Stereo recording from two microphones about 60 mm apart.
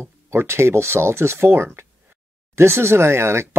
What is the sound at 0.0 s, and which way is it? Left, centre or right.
Speech, right.